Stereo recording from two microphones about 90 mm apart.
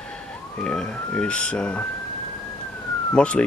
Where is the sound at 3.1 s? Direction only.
10° left (ahead or behind).